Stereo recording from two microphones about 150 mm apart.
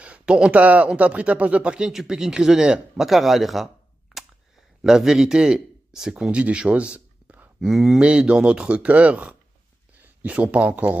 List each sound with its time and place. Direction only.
0.0 s speech: 5° right (ahead or behind)